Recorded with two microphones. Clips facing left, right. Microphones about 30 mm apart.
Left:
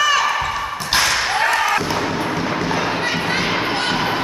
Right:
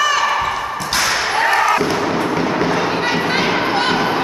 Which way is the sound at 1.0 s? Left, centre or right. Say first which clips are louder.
Right 4 dB; centre.